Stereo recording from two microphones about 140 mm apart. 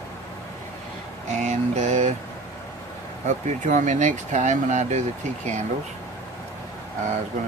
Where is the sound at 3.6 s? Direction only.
60° right (ahead or behind).